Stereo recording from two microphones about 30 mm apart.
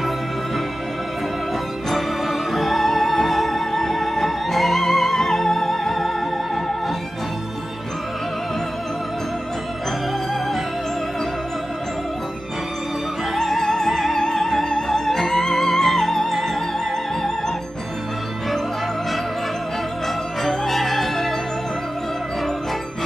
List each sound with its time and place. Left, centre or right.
1.9 s music: centre
13.3 s music: centre
20.4 s music: centre